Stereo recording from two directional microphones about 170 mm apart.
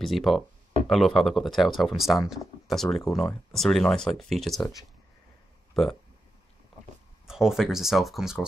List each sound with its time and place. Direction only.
0.0 s speech: centre (ahead or behind)
4.6 s speech: 20° left (ahead or behind)
7.2 s speech: centre (ahead or behind)